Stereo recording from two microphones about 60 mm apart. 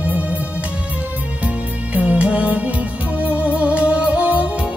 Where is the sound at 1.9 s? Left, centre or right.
Right.